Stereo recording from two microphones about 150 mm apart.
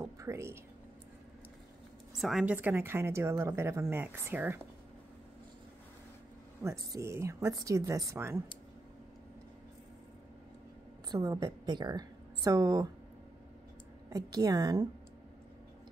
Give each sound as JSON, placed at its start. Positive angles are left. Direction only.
{"t": 0.0, "sound": "a sound", "side_deg": -20}
{"t": 2.1, "sound": "a woman's voice", "side_deg": 0}
{"t": 6.6, "sound": "a woman's voice", "side_deg": -20}
{"t": 11.1, "sound": "a woman's voice", "side_deg": -25}
{"t": 14.1, "sound": "a woman's voice", "side_deg": -25}